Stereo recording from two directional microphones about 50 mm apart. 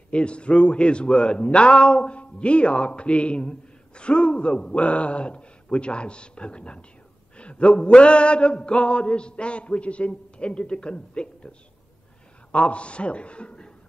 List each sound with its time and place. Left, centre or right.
0.1 s speech: left